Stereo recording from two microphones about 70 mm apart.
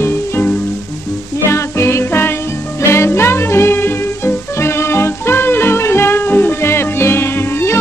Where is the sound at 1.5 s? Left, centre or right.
Left.